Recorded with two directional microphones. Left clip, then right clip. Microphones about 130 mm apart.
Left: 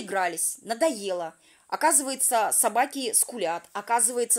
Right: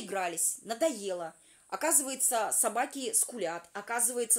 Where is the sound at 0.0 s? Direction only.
30° left (ahead or behind).